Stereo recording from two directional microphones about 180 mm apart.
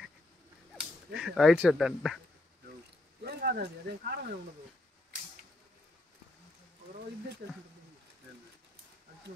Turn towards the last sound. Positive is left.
turn(degrees=-60)  # may be behind; listen again after turning